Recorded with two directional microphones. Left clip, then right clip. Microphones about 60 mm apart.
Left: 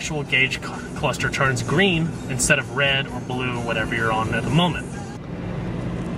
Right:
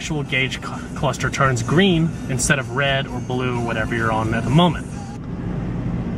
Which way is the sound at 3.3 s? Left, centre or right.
Centre.